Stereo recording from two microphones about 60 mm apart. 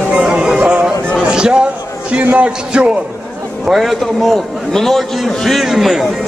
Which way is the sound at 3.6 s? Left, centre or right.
Centre.